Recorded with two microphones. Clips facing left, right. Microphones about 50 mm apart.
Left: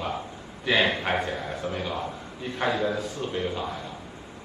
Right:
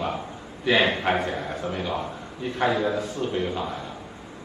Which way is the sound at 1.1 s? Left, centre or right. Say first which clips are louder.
Right 3 dB; right.